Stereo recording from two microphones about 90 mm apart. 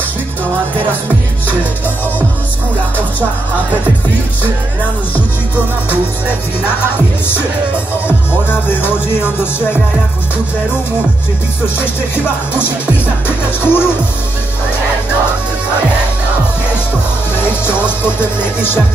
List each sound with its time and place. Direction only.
8.3 s music: 25° left (ahead or behind)
11.8 s music: 25° left (ahead or behind)
18.0 s music: 25° left (ahead or behind)